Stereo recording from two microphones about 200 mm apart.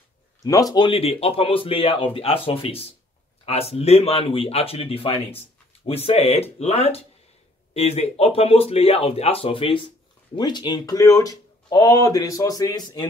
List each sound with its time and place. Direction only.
0.4 s speech: 15° left (ahead or behind)